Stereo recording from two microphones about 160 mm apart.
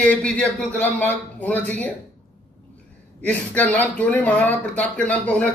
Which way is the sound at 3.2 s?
10° left (ahead or behind).